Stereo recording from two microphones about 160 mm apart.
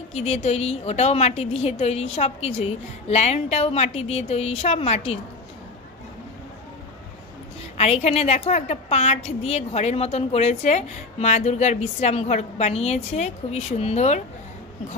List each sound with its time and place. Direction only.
0.1 s a woman's voice: 40° left (ahead or behind)
7.7 s a woman's voice: 40° left (ahead or behind)